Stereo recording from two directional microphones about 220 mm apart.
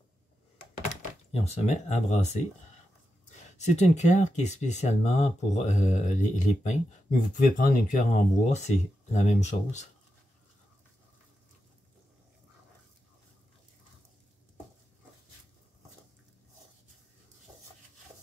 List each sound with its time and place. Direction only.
1.3 s speech: 30° left (ahead or behind)